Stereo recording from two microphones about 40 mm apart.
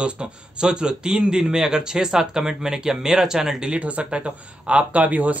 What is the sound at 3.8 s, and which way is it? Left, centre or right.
Speech, right.